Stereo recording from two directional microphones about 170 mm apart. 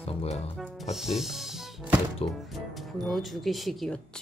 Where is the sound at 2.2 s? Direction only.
35° left (ahead or behind).